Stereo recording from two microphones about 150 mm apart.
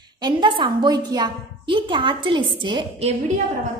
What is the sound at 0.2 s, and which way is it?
A woman's voice, 30° right (ahead or behind).